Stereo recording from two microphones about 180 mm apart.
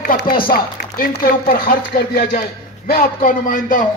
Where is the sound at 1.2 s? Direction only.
55° left (ahead or behind).